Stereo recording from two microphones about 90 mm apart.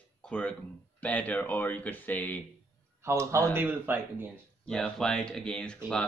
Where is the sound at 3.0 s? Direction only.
30° right (ahead or behind).